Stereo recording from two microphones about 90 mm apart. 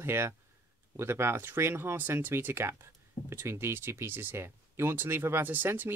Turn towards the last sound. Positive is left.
turn(degrees=-20)  # may be behind; listen again after turning